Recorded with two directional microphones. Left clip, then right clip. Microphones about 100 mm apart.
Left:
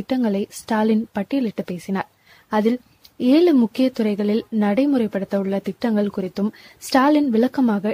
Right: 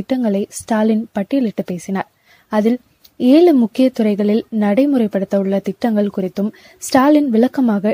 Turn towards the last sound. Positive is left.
turn(degrees=-30)  # may be behind; listen again after turning